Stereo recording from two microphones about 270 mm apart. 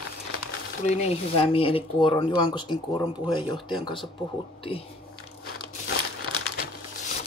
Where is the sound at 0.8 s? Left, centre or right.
Left.